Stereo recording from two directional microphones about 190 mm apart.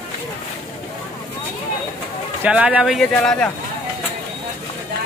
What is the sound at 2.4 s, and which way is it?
Speech, 5° right (ahead or behind).